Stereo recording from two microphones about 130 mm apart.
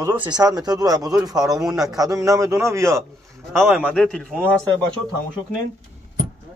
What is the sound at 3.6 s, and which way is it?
A man's voice, centre (ahead or behind).